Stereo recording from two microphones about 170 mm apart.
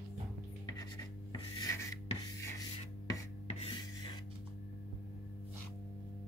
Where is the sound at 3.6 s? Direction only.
30° left (ahead or behind).